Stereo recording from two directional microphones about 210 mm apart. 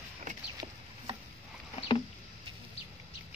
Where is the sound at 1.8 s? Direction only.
25° left (ahead or behind).